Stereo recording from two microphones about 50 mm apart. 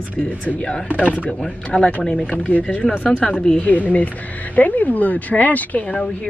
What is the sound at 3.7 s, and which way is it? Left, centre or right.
Speech, left.